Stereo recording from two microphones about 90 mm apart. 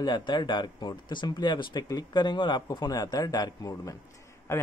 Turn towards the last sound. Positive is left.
turn(degrees=25)  # may be behind; listen again after turning